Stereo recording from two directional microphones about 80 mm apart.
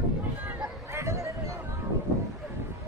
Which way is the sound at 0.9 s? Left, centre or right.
Right.